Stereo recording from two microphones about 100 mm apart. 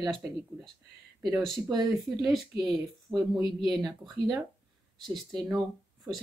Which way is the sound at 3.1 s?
20° right (ahead or behind).